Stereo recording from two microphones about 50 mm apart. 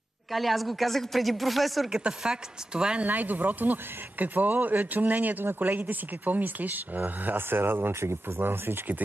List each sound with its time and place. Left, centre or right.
0.3 s speech: centre
1.9 s speech: centre
3.1 s speech: right